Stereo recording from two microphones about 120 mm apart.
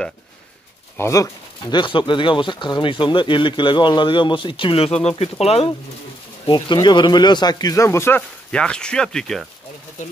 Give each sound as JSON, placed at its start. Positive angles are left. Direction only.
{"t": 0.9, "sound": "speech", "side_deg": 25}
{"t": 6.4, "sound": "speech", "side_deg": 40}
{"t": 8.5, "sound": "speech", "side_deg": 10}